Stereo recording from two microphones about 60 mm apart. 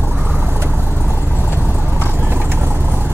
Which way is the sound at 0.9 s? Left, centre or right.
Left.